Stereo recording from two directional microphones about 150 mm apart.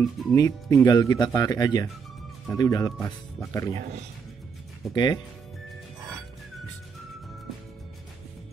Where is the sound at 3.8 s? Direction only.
50° right (ahead or behind).